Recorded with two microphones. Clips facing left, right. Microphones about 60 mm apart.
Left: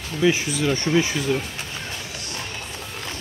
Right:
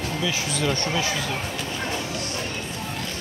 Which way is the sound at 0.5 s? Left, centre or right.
Centre.